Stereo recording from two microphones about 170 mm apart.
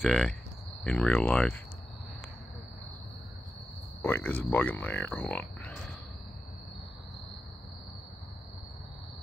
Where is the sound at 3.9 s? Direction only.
15° left (ahead or behind).